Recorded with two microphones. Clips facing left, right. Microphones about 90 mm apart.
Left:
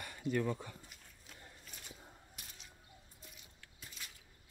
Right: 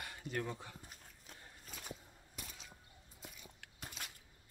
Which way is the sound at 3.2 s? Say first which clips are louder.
Right 4 dB; 75° right (ahead or behind).